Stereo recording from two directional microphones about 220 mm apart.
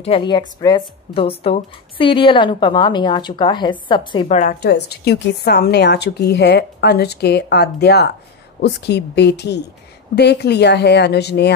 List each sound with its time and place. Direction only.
0.0 s speech: 25° left (ahead or behind)
4.6 s a woman's voice: 50° left (ahead or behind)